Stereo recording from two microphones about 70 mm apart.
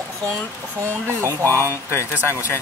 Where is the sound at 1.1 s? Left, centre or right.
Right.